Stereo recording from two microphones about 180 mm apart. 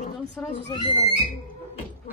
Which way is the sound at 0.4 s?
5° left (ahead or behind).